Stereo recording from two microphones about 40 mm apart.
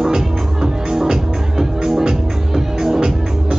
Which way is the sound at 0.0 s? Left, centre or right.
Centre.